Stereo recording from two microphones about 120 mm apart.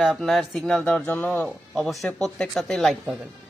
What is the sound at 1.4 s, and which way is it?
Speech, centre (ahead or behind).